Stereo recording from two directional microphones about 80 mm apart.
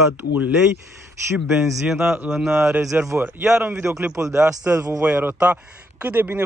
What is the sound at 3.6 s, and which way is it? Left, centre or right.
A man's voice, right.